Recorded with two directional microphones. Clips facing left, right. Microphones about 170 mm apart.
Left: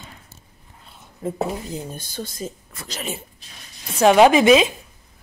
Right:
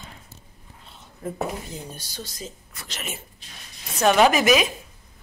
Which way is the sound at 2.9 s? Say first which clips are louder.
Left 6 dB; 35° left (ahead or behind).